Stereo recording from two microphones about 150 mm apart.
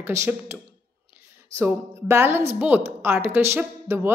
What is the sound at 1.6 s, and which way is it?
Speech, 15° right (ahead or behind).